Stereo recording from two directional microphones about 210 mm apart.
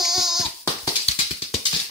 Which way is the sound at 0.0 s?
Centre (ahead or behind).